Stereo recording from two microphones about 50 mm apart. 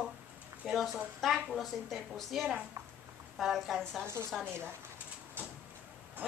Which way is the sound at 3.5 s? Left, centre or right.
Centre.